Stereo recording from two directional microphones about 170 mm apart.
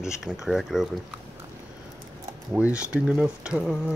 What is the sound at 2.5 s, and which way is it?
Speech, 10° right (ahead or behind).